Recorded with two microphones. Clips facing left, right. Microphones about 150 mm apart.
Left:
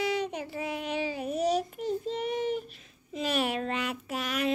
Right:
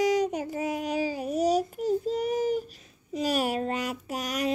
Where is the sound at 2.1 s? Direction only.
40° right (ahead or behind).